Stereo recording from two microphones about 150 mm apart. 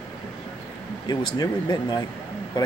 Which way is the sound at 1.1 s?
30° left (ahead or behind).